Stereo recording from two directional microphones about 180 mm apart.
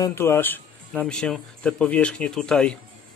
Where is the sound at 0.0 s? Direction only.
15° left (ahead or behind).